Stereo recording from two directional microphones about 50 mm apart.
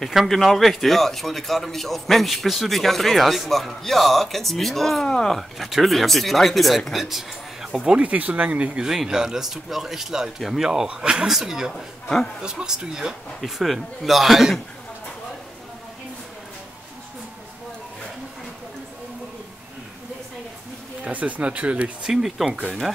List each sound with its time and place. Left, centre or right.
0.0 s a man's voice: centre
5.0 s a man's voice: centre
5.3 s a man's voice: centre
7.8 s speech: right
8.8 s a man's voice: centre
10.9 s speech: centre
11.7 s a man's voice: centre
12.4 s speech: centre
13.4 s a man's voice: centre
21.0 s speech: right
22.0 s speech: centre